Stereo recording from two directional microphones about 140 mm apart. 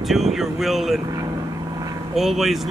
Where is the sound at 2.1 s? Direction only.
Centre (ahead or behind).